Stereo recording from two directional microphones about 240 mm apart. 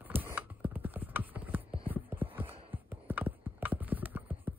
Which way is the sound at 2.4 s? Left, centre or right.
Right.